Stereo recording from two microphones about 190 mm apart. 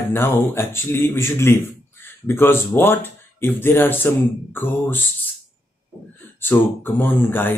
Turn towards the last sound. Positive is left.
turn(degrees=10)  # may be behind; listen again after turning